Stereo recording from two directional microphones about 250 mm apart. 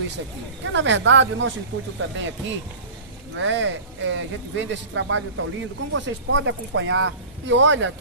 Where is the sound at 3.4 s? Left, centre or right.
Right.